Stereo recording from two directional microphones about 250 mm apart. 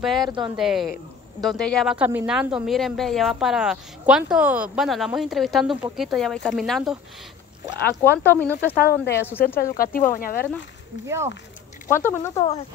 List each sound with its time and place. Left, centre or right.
0.0 s speech: centre
8.7 s speech: left
11.9 s speech: centre
12.4 s speech: left